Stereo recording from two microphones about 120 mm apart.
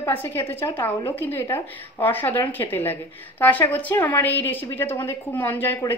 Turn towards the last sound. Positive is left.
turn(degrees=15)  # may be behind; listen again after turning